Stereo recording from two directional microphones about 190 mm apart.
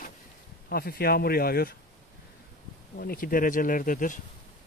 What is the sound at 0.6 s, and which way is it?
Speech, 55° left (ahead or behind).